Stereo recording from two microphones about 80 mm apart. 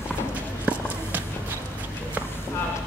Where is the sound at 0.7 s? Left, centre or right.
Centre.